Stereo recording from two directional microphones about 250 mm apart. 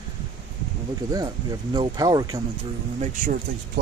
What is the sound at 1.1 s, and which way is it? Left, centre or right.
Speech, centre.